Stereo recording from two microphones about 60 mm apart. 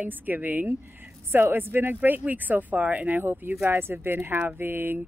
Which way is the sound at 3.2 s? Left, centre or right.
Right.